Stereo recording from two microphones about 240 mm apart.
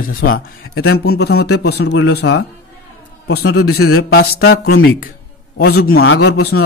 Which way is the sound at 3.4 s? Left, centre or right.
Left.